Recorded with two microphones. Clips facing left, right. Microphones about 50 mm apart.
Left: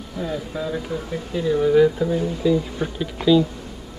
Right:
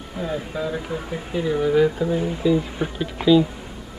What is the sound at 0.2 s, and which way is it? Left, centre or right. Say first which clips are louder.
Speech: even; right.